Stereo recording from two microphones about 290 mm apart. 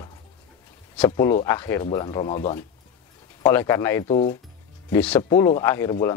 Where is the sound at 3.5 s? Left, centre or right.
Centre.